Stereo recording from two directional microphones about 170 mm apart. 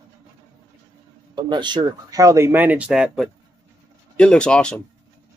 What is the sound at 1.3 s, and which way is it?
Speech, 25° right (ahead or behind).